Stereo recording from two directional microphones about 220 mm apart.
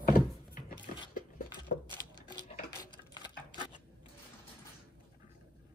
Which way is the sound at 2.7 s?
15° left (ahead or behind).